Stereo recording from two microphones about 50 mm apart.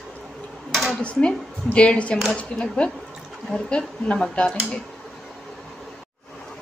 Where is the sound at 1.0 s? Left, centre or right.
Left.